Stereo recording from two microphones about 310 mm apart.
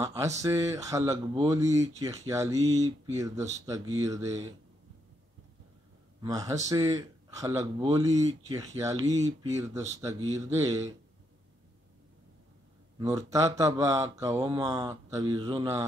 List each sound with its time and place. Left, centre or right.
0.0 s speech: centre
6.2 s speech: centre
9.0 s speech: right
9.9 s speech: centre
13.0 s speech: centre